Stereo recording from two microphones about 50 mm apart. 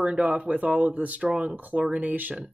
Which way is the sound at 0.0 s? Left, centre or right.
Right.